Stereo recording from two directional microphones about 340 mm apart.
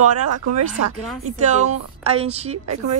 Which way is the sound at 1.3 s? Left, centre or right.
Right.